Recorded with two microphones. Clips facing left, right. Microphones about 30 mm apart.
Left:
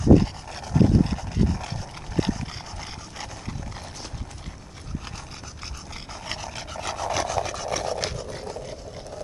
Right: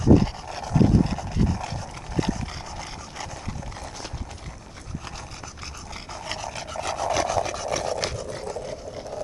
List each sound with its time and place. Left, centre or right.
0.0 s dog: centre
6.1 s dog: centre
8.3 s vehicle: centre